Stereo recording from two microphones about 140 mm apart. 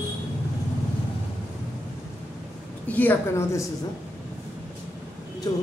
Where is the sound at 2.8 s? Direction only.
10° left (ahead or behind).